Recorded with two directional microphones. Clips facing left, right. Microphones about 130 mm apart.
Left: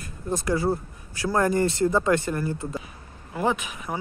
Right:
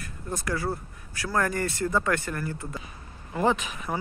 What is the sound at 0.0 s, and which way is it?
Speech, 20° left (ahead or behind).